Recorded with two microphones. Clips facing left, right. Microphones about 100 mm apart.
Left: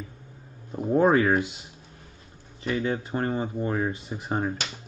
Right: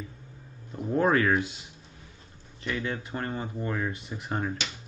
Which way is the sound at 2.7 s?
25° left (ahead or behind).